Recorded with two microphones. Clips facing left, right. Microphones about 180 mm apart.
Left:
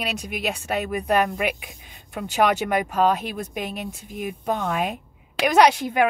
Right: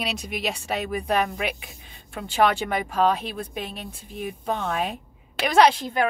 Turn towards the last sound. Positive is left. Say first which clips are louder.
# left 1 dB
turn(degrees=10)  # may be behind; listen again after turning